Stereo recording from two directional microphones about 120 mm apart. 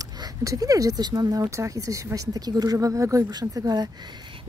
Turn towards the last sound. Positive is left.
turn(degrees=-30)  # may be behind; listen again after turning